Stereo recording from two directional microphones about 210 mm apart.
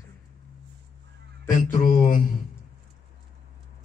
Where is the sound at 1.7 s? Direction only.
40° left (ahead or behind).